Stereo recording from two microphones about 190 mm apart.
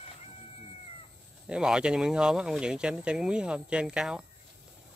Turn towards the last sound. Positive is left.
turn(degrees=-5)  # may be behind; listen again after turning